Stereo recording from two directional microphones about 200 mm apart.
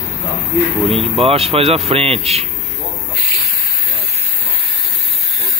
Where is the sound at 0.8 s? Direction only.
30° right (ahead or behind).